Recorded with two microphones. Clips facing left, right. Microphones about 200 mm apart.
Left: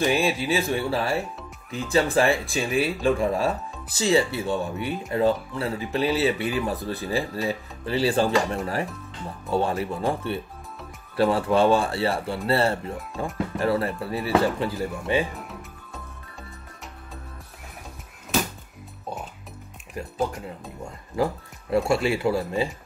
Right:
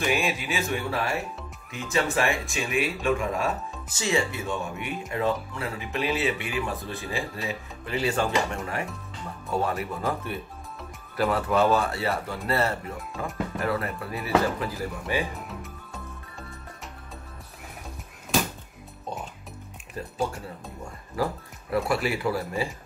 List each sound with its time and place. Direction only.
0.0 s speech: 30° left (ahead or behind)
15.4 s music: centre (ahead or behind)
21.2 s speech: 25° left (ahead or behind)